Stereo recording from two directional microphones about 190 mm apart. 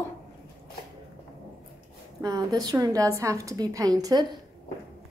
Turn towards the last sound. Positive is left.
turn(degrees=-20)  # may be behind; listen again after turning